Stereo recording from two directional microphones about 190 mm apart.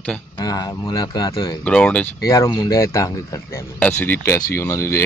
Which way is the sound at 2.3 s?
20° left (ahead or behind).